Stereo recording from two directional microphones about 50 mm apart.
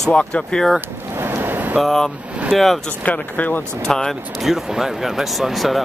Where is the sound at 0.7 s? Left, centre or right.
Right.